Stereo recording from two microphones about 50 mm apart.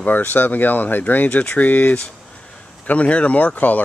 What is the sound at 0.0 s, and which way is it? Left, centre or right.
Speech, left.